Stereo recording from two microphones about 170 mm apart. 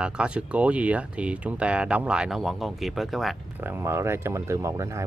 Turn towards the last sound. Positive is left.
turn(degrees=-20)  # may be behind; listen again after turning